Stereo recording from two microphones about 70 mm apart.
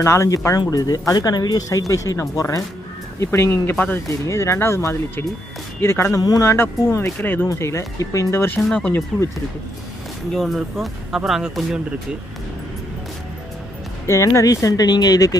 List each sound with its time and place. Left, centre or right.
0.0 s speech: left
0.6 s speech: left
3.7 s speech: left
4.1 s speech: left
6.1 s speech: left
6.4 s speech: left
7.4 s speech: left
8.6 s speech: centre
10.3 s speech: centre
14.0 s speech: left